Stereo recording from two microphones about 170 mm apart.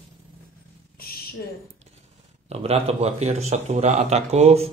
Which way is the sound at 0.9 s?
60° left (ahead or behind).